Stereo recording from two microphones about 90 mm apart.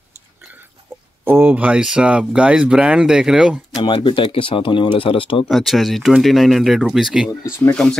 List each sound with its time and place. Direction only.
1.2 s speech: 25° right (ahead or behind)
3.8 s speech: 65° left (ahead or behind)
5.5 s speech: centre (ahead or behind)
7.7 s speech: 5° left (ahead or behind)